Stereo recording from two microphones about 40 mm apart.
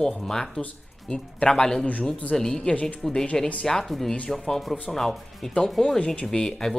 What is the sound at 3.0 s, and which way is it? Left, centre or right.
Speech, centre.